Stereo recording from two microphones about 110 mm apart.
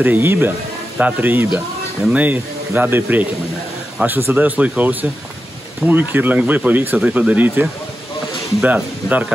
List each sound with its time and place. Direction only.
0.0 s speech: 20° right (ahead or behind)
2.0 s speech: 5° right (ahead or behind)
2.2 s speech: 15° right (ahead or behind)
8.6 s speech: 15° right (ahead or behind)